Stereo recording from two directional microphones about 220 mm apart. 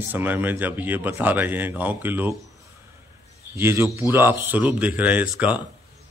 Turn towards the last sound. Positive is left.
turn(degrees=-5)  # may be behind; listen again after turning